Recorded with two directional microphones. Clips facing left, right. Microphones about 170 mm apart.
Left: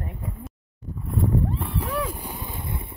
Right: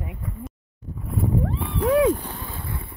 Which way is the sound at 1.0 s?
Centre (ahead or behind).